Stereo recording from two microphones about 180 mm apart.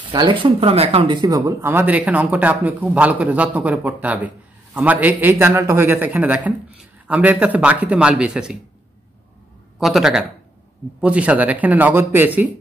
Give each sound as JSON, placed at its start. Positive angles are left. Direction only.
{"t": 0.1, "sound": "speech", "side_deg": -25}
{"t": 1.4, "sound": "a man's voice", "side_deg": -15}
{"t": 9.8, "sound": "a man's voice", "side_deg": 0}